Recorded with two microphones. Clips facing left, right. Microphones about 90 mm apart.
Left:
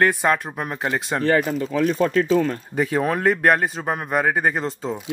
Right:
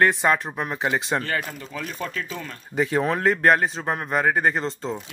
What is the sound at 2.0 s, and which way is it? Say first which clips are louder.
Speech: left 13 dB; 45° left (ahead or behind).